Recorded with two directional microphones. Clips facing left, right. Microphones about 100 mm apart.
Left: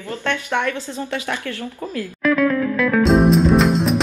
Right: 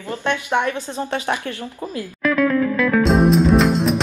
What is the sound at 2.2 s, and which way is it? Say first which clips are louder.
Music: even; centre (ahead or behind).